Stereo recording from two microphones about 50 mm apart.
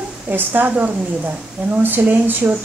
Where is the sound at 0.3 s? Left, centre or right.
Right.